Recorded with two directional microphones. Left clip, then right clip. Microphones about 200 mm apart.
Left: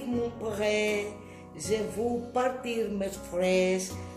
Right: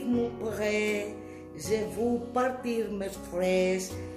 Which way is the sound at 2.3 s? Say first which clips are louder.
Even; 15° right (ahead or behind).